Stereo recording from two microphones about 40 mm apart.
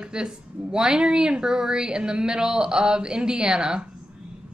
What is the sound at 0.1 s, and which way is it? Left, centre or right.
A woman's voice, right.